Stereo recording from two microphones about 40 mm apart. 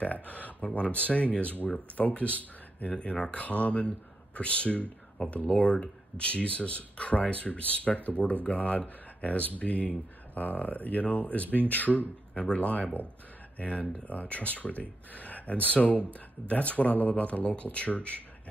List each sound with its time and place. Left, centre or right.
0.0 s speech: left
11.4 s speech: right
11.7 s speech: left